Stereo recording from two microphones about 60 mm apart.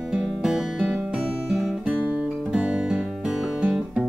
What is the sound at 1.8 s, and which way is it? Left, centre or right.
Music, right.